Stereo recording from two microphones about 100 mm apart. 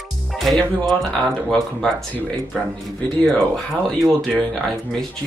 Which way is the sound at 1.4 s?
5° left (ahead or behind).